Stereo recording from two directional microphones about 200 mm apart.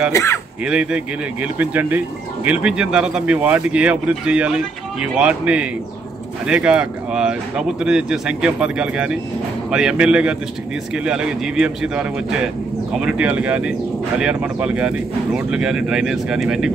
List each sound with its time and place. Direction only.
0.1 s speech: 15° left (ahead or behind)
0.7 s speech: 5° right (ahead or behind)